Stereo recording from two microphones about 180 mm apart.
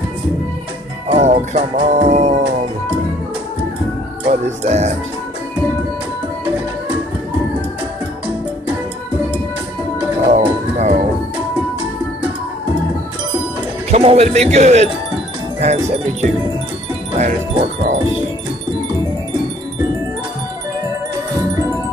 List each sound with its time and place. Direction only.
1.0 s music: 35° right (ahead or behind)
4.3 s music: 40° right (ahead or behind)
10.2 s music: 35° right (ahead or behind)
13.8 s music: 35° right (ahead or behind)